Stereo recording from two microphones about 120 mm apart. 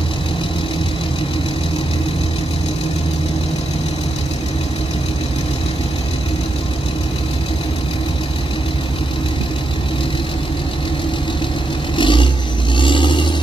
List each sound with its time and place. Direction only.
12.0 s vehicle: 40° left (ahead or behind)